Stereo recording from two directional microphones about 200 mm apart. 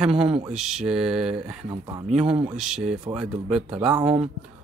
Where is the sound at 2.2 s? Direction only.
25° right (ahead or behind).